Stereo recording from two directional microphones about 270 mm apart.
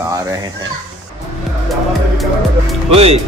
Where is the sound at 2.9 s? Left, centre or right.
Right.